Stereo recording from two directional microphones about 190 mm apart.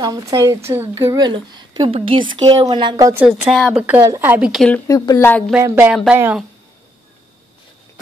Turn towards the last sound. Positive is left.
turn(degrees=-5)  # may be behind; listen again after turning